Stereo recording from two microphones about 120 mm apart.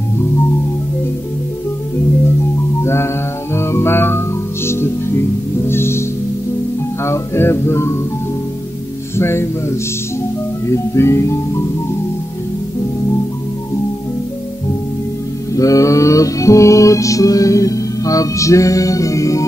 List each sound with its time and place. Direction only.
2.8 s music: 20° left (ahead or behind)
5.7 s music: 20° left (ahead or behind)
7.1 s music: 20° left (ahead or behind)
9.1 s speech: 20° left (ahead or behind)
15.5 s music: 30° left (ahead or behind)